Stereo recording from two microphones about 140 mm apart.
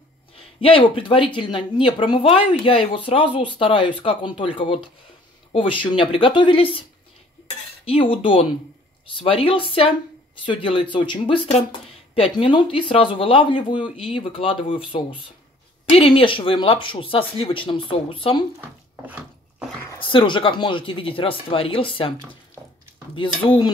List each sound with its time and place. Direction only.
0.6 s speech: 40° left (ahead or behind)
7.8 s speech: 40° left (ahead or behind)
18.6 s speech: 10° right (ahead or behind)
20.0 s speech: 35° left (ahead or behind)
23.1 s speech: 35° left (ahead or behind)